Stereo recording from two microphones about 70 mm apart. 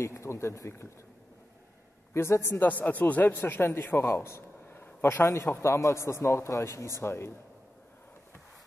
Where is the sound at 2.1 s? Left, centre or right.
Left.